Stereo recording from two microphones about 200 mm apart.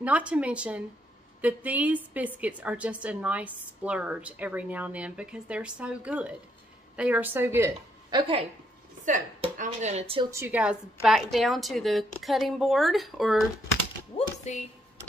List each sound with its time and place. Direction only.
0.0 s a woman's voice: 5° right (ahead or behind)
8.2 s a woman's voice: 25° right (ahead or behind)
9.0 s speech: 40° right (ahead or behind)
10.3 s a woman's voice: 10° right (ahead or behind)
14.1 s a sound: 35° left (ahead or behind)